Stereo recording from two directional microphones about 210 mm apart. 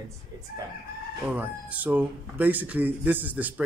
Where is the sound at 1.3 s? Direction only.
5° right (ahead or behind).